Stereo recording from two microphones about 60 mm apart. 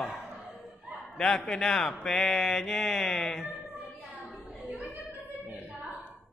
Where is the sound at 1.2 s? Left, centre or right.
Centre.